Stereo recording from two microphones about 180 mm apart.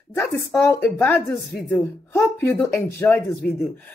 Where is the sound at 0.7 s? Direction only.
10° left (ahead or behind).